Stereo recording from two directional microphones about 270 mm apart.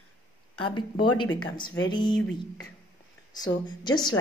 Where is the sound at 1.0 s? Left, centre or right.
Left.